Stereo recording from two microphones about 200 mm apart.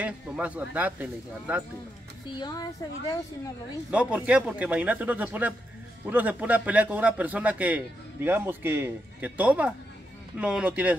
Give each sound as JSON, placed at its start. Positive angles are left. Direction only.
{"t": 0.0, "sound": "a man's voice", "side_deg": -5}
{"t": 2.3, "sound": "speech", "side_deg": 20}
{"t": 3.9, "sound": "a man's voice", "side_deg": -5}